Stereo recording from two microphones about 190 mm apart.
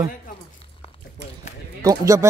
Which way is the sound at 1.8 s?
15° right (ahead or behind).